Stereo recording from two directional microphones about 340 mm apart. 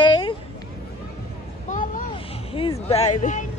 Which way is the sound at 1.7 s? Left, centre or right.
Left.